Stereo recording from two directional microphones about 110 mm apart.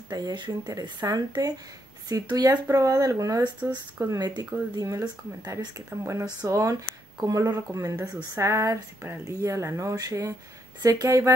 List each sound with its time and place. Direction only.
0.1 s speech: 40° right (ahead or behind)